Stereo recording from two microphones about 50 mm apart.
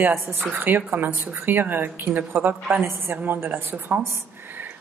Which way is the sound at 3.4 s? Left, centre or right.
Right.